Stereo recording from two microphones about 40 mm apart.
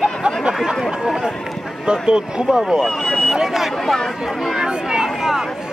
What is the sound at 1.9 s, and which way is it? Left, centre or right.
Speech, right.